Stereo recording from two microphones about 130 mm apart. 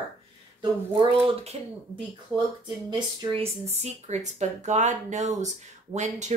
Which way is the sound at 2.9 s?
45° right (ahead or behind).